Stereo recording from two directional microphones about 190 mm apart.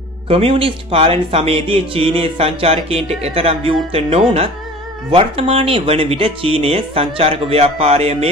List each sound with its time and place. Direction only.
0.3 s speech: 30° right (ahead or behind)